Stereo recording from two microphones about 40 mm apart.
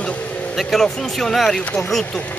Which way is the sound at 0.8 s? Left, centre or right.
Centre.